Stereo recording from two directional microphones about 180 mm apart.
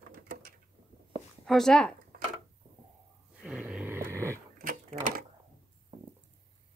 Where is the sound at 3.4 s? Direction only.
Centre (ahead or behind).